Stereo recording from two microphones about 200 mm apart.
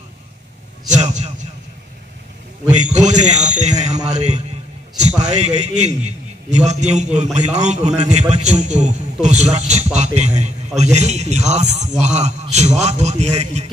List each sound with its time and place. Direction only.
0.8 s a man's voice: 35° right (ahead or behind)
2.7 s a man's voice: 35° right (ahead or behind)